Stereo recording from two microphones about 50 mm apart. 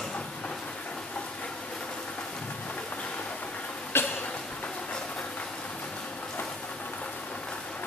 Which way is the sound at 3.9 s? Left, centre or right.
Left.